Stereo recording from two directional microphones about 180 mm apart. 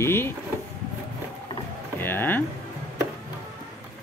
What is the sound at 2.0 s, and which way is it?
Speech, 10° left (ahead or behind).